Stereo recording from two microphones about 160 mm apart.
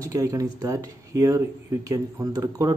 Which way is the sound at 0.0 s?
20° right (ahead or behind).